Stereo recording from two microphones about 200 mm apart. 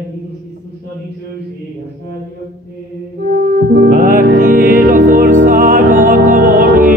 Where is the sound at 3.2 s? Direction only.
50° right (ahead or behind).